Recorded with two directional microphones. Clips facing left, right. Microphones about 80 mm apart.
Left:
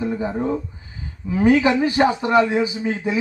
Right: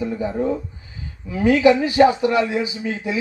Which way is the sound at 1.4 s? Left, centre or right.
Left.